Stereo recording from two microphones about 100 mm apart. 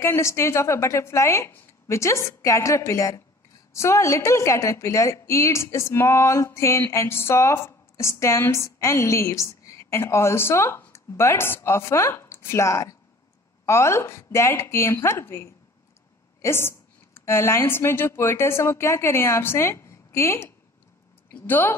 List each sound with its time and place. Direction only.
0.0 s a woman's voice: 30° left (ahead or behind)